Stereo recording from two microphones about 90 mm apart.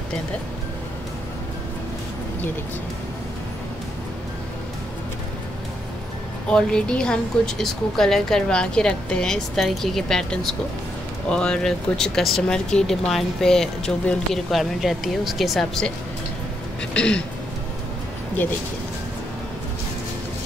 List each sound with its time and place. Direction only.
6.5 s speech: 10° left (ahead or behind)
16.9 s speech: 10° left (ahead or behind)
18.4 s speech: 20° left (ahead or behind)